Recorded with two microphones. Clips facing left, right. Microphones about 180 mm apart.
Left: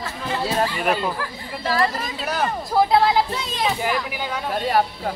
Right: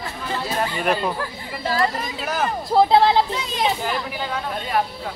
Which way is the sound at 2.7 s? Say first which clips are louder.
Right 2 dB; 25° right (ahead or behind).